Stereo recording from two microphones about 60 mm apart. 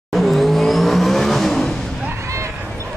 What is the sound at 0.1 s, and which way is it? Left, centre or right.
Vehicle, centre.